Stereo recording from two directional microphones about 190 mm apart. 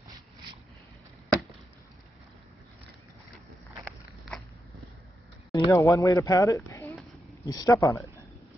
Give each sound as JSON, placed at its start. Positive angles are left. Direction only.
{"t": 5.5, "sound": "speech", "side_deg": 15}
{"t": 7.0, "sound": "a sound", "side_deg": 0}
{"t": 7.4, "sound": "speech", "side_deg": 20}